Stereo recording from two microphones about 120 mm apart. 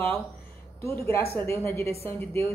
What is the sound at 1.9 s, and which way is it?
Speech, 55° right (ahead or behind).